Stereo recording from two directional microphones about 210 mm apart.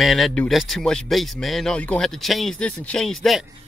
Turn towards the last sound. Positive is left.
turn(degrees=0)  # may be behind; listen again after turning